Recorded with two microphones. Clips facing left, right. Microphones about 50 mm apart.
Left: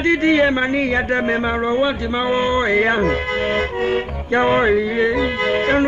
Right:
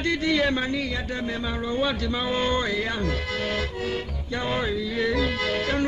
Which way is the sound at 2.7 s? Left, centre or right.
Left.